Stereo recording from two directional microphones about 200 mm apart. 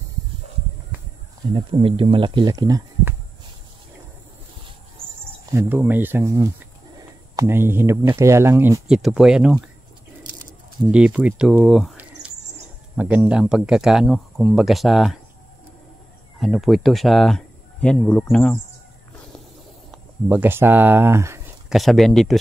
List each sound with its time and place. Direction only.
1.5 s speech: 25° right (ahead or behind)
5.5 s speech: 10° right (ahead or behind)
16.3 s speech: centre (ahead or behind)
19.9 s speech: 10° right (ahead or behind)
21.6 s speech: centre (ahead or behind)